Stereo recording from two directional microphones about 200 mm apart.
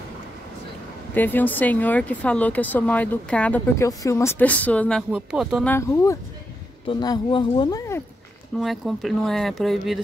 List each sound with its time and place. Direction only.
1.1 s speech: 10° left (ahead or behind)
5.7 s speech: 15° left (ahead or behind)
8.5 s speech: centre (ahead or behind)